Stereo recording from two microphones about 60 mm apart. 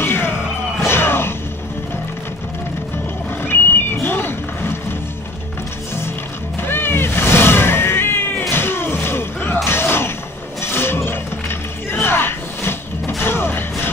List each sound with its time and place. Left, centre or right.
0.0 s music: left
3.4 s a sound: left
6.7 s cat: left
9.7 s slam: left
10.6 s music: left